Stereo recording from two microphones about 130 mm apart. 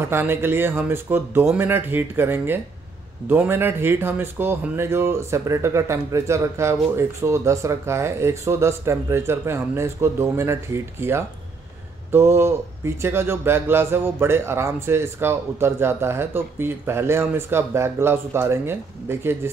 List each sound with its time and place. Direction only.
0.0 s speech: 15° right (ahead or behind)